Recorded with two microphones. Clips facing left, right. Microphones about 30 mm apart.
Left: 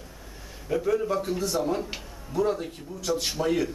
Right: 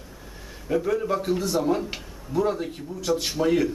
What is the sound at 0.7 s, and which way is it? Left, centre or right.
A man's voice, centre.